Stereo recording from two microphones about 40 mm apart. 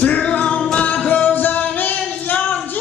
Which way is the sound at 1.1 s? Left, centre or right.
Left.